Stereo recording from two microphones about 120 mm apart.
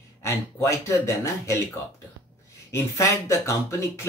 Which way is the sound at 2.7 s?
25° left (ahead or behind).